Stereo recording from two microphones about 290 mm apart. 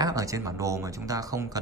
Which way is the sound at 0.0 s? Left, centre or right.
Centre.